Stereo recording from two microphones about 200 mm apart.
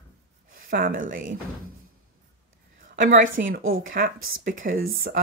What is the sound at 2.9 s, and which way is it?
A woman's voice, 45° right (ahead or behind).